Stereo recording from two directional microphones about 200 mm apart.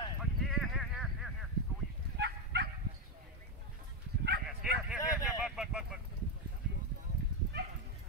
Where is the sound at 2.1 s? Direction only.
55° right (ahead or behind).